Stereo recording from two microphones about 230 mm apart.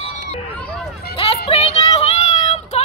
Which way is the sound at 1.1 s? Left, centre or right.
Left.